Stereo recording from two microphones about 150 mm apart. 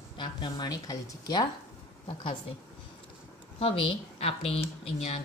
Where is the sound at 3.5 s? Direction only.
35° left (ahead or behind).